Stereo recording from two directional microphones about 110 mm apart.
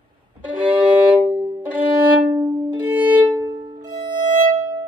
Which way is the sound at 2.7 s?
15° right (ahead or behind).